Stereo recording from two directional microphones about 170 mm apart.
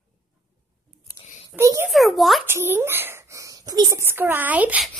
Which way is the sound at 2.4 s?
15° right (ahead or behind).